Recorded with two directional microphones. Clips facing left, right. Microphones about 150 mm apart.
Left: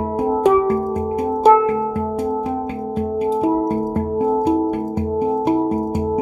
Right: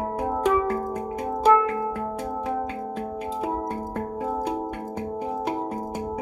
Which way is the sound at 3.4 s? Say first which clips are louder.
Left 9 dB; 30° left (ahead or behind).